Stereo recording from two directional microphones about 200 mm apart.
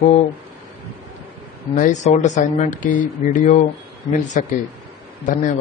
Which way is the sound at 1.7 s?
40° left (ahead or behind).